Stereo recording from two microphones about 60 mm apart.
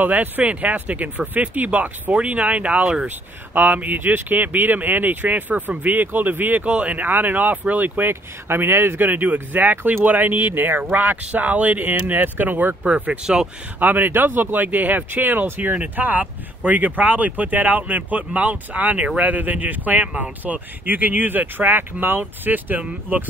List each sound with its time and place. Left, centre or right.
0.0 s speech: right
8.1 s speech: right
13.2 s speech: centre
13.7 s speech: right